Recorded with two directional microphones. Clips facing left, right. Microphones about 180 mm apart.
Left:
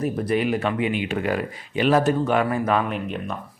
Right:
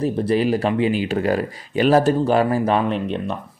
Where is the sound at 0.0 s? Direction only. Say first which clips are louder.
Right 4 dB; 30° right (ahead or behind).